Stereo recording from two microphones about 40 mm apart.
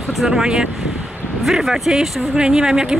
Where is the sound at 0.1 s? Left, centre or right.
Centre.